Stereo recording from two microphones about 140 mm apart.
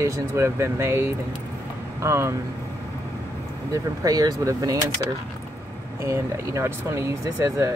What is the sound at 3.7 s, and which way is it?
Speech, 25° right (ahead or behind).